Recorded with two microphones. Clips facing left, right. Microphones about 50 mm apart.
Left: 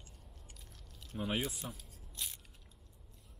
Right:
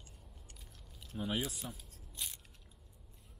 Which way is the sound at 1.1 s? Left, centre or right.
Left.